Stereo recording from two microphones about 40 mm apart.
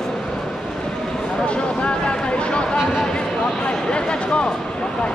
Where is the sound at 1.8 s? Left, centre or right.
Left.